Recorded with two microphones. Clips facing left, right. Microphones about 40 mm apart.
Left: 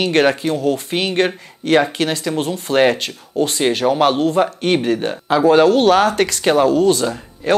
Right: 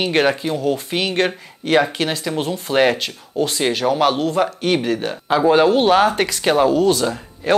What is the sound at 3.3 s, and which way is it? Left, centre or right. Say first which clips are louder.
Speech: left 2 dB; left.